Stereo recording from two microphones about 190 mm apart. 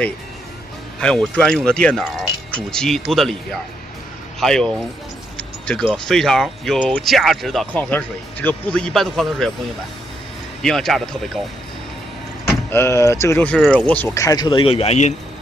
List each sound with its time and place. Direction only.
1.0 s speech: 5° left (ahead or behind)
4.4 s speech: 5° left (ahead or behind)
10.6 s speech: centre (ahead or behind)
12.6 s speech: 15° left (ahead or behind); by 15.1 s 35° left (ahead or behind)